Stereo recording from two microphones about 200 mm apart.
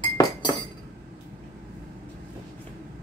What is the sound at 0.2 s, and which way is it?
Chink, 20° left (ahead or behind).